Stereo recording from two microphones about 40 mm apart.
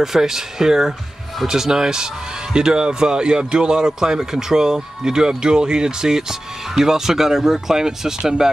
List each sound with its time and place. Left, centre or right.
0.0 s speech: centre